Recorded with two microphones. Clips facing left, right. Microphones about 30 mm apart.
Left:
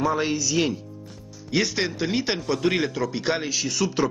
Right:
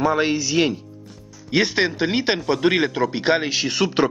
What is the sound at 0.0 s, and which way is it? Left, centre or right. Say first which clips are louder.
Speech: right 4 dB; right.